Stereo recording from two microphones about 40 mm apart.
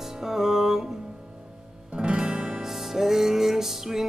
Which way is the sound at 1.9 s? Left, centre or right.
Right.